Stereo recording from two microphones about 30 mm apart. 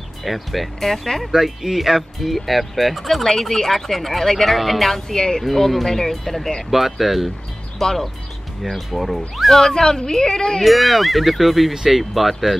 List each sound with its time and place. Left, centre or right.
0.2 s speech: centre
0.7 s speech: centre
1.3 s speech: centre
5.1 s a woman's voice: left
5.4 s speech: centre
6.7 s speech: centre
7.8 s speech: centre
9.7 s a woman's voice: left
10.6 s speech: centre